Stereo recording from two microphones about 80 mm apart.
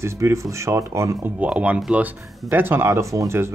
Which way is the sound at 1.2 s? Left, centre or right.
Centre.